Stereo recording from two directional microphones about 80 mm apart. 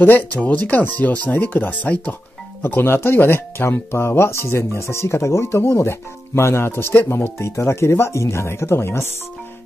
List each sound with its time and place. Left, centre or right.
0.0 s speech: left
2.6 s speech: left